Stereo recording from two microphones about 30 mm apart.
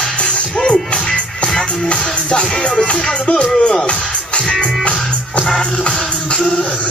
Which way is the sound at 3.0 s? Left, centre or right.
Left.